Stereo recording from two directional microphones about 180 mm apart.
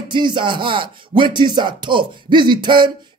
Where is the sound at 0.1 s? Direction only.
25° right (ahead or behind).